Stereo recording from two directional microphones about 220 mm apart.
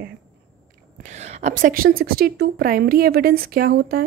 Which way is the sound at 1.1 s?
30° right (ahead or behind).